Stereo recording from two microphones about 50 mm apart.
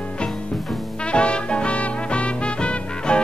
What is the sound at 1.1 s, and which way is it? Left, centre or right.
Music, left.